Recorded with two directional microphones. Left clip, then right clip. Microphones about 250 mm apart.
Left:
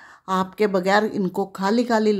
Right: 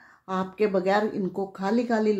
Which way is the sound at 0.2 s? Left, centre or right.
Left.